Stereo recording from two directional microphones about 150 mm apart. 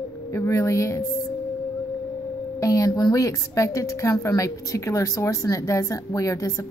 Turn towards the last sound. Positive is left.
turn(degrees=20)  # may be behind; listen again after turning